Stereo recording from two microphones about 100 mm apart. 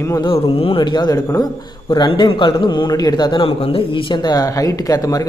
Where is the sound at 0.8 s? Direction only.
50° left (ahead or behind).